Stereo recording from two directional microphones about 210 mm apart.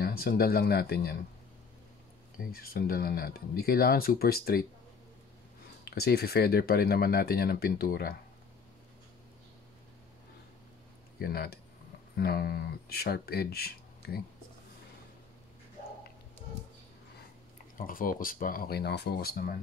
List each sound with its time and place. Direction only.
0.0 s speech: 45° left (ahead or behind)
2.3 s speech: 45° left (ahead or behind)
5.9 s speech: 50° left (ahead or behind)
11.1 s speech: 50° left (ahead or behind)
17.7 s speech: 40° left (ahead or behind)